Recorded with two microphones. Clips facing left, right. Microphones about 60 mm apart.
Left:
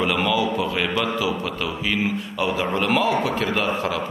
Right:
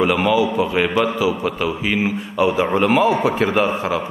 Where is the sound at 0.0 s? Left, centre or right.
Centre.